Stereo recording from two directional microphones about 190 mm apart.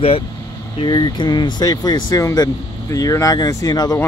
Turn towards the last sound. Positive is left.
turn(degrees=20)  # may be behind; listen again after turning